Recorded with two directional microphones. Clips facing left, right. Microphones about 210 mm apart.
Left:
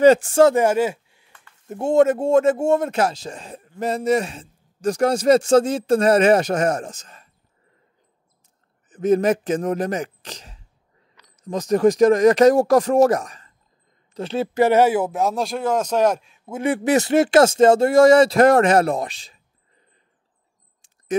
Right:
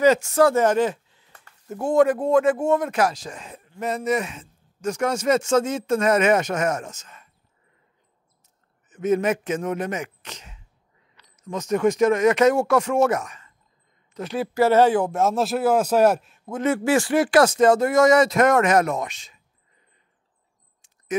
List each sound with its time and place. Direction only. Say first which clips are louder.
0.0 s speech: left 4 dB; 30° left (ahead or behind)
0.6 s speech: left 1 dB; 10° left (ahead or behind)
1.7 s speech: left 2 dB; 25° left (ahead or behind)
8.8 s speech: left 4 dB; 35° left (ahead or behind)
21.1 s speech: left 3 dB; 30° left (ahead or behind)